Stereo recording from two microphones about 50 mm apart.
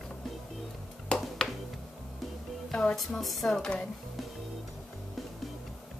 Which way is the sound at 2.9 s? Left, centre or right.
Centre.